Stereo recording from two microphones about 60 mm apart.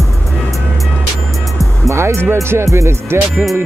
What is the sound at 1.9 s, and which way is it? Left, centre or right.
Music, right.